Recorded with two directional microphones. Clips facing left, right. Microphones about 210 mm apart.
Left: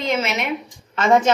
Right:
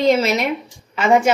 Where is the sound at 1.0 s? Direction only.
10° right (ahead or behind).